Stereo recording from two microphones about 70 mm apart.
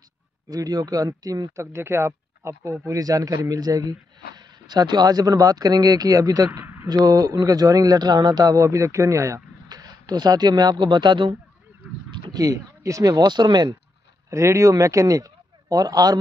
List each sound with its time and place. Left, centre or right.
0.5 s speech: right
1.6 s speech: right
2.9 s speech: right
4.4 s speech: right
6.6 s a sound: right
6.9 s speech: right
8.5 s speech: right
9.7 s speech: right
12.1 s a sound: right
13.1 s speech: right
14.3 s a man's voice: right